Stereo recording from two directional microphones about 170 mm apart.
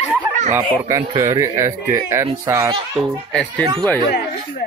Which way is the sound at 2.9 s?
5° left (ahead or behind).